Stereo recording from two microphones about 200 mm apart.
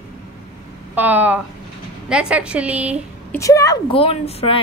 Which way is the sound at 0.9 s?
10° right (ahead or behind).